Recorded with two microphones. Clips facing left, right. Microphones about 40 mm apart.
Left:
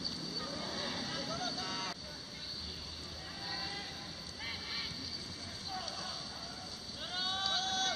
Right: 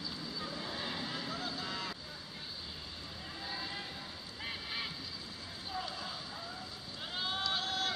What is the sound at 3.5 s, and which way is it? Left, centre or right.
Vehicle, centre.